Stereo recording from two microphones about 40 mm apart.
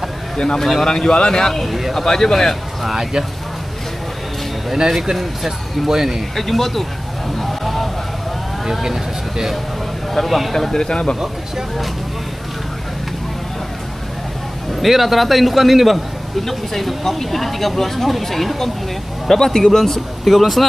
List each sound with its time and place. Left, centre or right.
0.4 s a man's voice: left
2.8 s speech: centre
5.1 s speech: centre
6.3 s speech: centre
7.3 s vehicle: centre
8.8 s speech: centre
10.5 s a man's voice: centre
14.7 s a man's voice: centre